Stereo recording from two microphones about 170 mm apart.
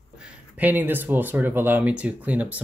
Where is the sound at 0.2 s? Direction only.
10° right (ahead or behind).